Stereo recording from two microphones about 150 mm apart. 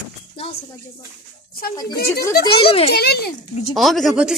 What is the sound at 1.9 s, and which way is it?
Speech, 90° left.